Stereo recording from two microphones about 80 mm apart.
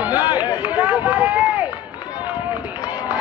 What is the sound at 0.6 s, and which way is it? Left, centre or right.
Run, centre.